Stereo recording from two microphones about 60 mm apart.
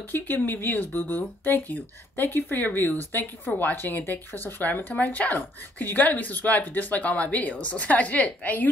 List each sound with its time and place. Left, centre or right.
0.1 s speech: left